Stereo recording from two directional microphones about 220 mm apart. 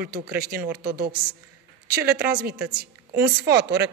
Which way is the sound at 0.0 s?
45° right (ahead or behind).